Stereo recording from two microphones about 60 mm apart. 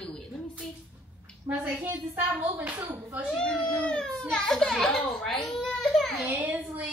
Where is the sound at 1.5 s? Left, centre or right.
Right.